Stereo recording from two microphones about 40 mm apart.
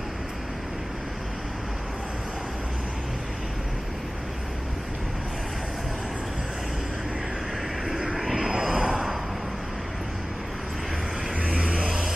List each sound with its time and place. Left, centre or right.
7.9 s vehicle: centre
11.4 s vehicle: right